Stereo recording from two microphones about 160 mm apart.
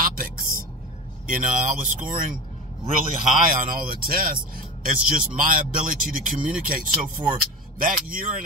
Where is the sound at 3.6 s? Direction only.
60° right (ahead or behind).